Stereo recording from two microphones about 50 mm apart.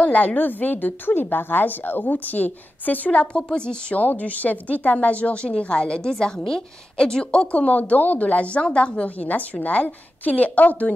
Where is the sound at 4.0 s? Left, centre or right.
Left.